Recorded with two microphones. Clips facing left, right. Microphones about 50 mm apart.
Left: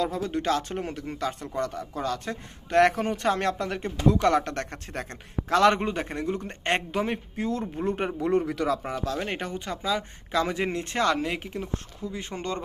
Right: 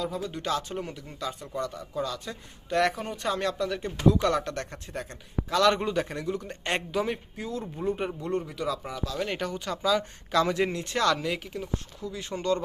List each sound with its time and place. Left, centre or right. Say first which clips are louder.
0.0 s speech: left 5 dB; left
8.2 s speech: left 6 dB; left
8.6 s speech: left 4 dB; left
9.2 s speech: right 1 dB; left